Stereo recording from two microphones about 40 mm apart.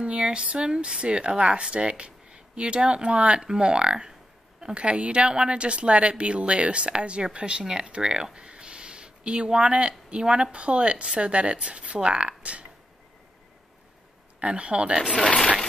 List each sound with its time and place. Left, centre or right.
0.0 s a woman's voice: right
14.4 s a woman's voice: right
15.2 s speech: left